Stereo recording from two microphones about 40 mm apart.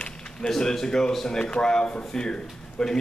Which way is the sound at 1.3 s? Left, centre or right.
Left.